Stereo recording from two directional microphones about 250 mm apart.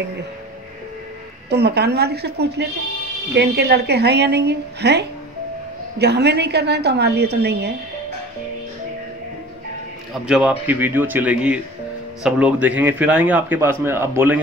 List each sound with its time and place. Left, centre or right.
1.5 s a woman's voice: right
10.2 s a man's voice: centre